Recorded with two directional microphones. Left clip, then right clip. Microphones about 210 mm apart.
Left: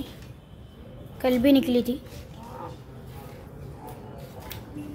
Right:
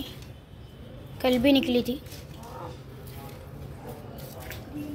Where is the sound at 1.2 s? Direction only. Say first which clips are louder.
Left 1 dB; 15° left (ahead or behind).